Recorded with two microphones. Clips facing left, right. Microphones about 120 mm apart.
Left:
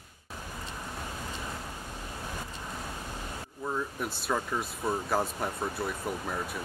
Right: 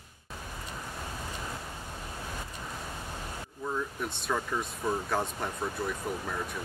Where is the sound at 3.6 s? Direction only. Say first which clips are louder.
Left 1 dB; 10° left (ahead or behind).